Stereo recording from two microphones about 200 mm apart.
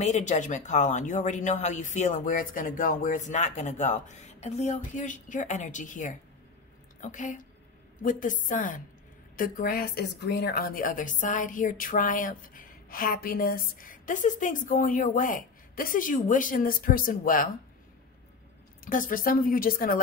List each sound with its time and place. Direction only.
0.0 s a woman's voice: 35° left (ahead or behind)
18.9 s a woman's voice: 45° left (ahead or behind)